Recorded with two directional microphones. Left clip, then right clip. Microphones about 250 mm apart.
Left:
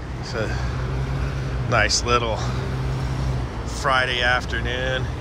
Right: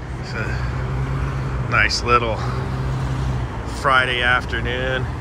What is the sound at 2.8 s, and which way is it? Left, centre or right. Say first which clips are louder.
Vehicle: right 2 dB; right.